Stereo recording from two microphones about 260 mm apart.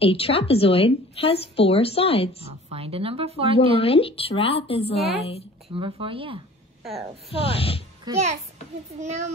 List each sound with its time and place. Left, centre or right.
0.0 s a woman's voice: left
2.7 s a woman's voice: right
3.7 s a woman's voice: left
5.8 s a woman's voice: centre
7.3 s a woman's voice: left
8.1 s a child's voice: centre